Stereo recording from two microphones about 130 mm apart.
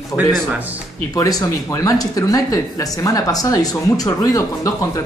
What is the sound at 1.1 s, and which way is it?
Speech, 25° left (ahead or behind).